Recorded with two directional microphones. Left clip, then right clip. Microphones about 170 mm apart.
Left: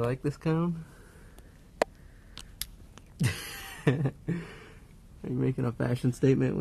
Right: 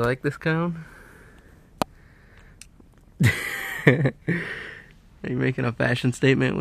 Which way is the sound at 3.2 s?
25° right (ahead or behind).